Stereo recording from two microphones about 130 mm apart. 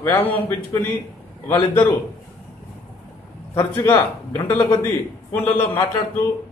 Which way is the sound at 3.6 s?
20° left (ahead or behind).